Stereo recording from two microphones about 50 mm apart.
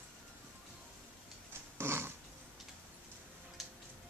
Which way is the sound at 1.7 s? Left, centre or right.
Right.